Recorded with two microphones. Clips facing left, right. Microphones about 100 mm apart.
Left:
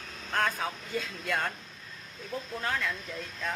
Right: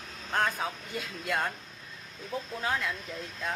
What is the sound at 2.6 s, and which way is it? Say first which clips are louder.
Speech: right 1 dB; 10° right (ahead or behind).